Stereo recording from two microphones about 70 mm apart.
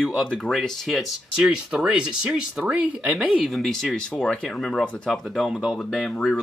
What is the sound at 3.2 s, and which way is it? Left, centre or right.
Speech, centre.